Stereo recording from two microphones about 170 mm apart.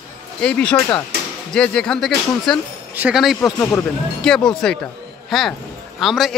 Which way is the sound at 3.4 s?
15° left (ahead or behind).